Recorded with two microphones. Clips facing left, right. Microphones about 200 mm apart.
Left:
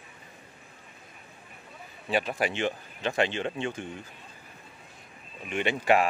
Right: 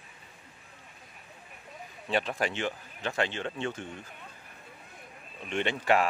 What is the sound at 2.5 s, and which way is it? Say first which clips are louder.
Speech: left 3 dB; 20° left (ahead or behind).